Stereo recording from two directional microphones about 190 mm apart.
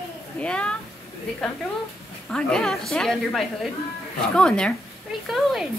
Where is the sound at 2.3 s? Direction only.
5° left (ahead or behind).